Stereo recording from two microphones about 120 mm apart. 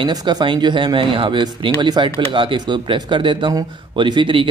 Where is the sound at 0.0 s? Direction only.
35° right (ahead or behind).